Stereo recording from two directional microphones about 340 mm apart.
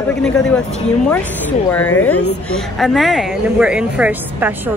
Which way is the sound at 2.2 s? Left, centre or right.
Left.